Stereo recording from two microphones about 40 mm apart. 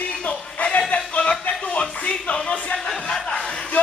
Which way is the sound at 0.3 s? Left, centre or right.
Left.